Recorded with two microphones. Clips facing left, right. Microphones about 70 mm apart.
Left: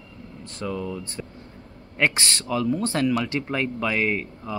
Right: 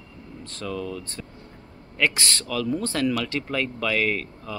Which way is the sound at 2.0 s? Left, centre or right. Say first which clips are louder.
Left 1 dB; left.